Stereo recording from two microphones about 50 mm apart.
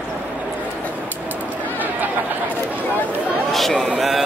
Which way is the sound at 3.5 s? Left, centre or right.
Centre.